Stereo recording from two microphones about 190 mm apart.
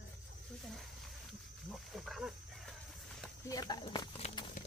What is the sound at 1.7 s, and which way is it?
Wild animals, centre (ahead or behind).